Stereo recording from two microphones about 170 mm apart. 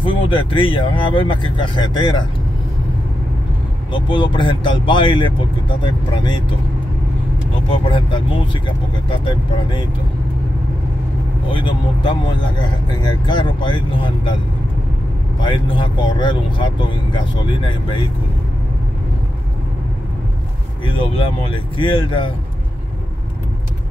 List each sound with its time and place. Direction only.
0.0 s speech: 30° left (ahead or behind)
3.9 s speech: 30° left (ahead or behind)
7.7 s speech: 30° left (ahead or behind)
11.5 s speech: 30° left (ahead or behind)
15.4 s speech: 30° left (ahead or behind)
20.8 s speech: 30° left (ahead or behind)